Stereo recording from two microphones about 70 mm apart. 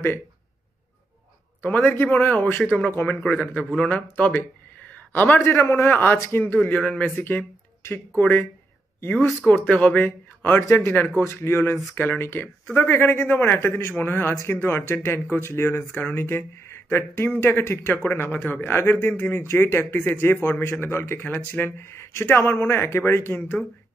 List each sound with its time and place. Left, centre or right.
1.6 s a man's voice: left
2.9 s speech: left
3.3 s a man's voice: centre; by 9.3 s left
9.5 s a man's voice: left